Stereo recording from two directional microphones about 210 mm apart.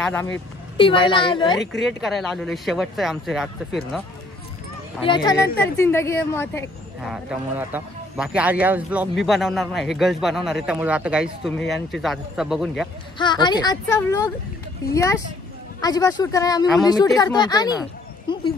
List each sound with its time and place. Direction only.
0.0 s speech: 10° left (ahead or behind)
0.7 s speech: 25° left (ahead or behind)
1.7 s speech: centre (ahead or behind)
5.0 s a woman's voice: 20° left (ahead or behind)
7.1 s a man's voice: 5° right (ahead or behind)
13.2 s a woman's voice: 20° left (ahead or behind)